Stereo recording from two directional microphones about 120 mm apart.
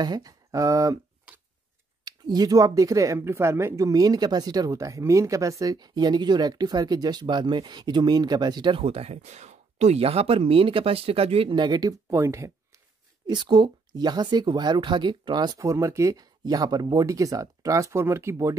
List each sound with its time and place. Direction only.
0.0 s speech: 35° right (ahead or behind)
2.0 s speech: 35° right (ahead or behind)
8.8 s speech: 60° right (ahead or behind); by 12.5 s 25° right (ahead or behind)
13.3 s speech: 40° right (ahead or behind)
15.6 s speech: 25° right (ahead or behind)